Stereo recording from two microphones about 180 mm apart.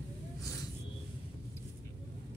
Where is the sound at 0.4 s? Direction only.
20° left (ahead or behind).